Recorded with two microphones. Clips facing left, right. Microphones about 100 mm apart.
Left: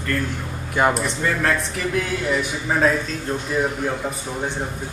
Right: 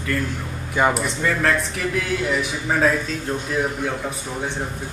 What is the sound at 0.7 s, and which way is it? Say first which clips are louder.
Speech: even; centre (ahead or behind).